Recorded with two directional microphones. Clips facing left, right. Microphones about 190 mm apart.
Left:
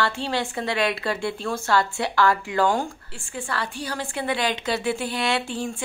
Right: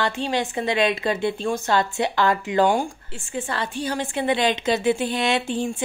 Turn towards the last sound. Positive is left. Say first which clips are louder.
# right 4 dB
turn(degrees=-20)  # may be behind; listen again after turning